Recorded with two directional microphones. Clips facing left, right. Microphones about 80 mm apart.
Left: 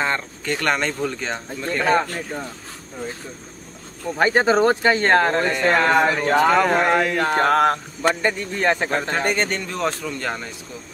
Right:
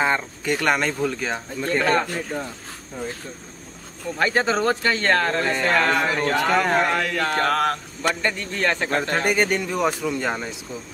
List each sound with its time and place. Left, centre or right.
0.0 s speech: centre
4.2 s speech: left
6.4 s a sound: centre
6.7 s speech: left
9.1 s speech: centre